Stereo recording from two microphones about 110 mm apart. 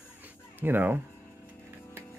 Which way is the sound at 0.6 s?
15° right (ahead or behind).